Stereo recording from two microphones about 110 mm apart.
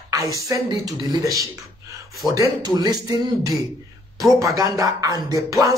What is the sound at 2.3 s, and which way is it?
Speech, 35° right (ahead or behind).